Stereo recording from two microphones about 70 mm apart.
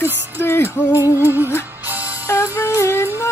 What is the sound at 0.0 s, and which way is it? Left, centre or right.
Music, left.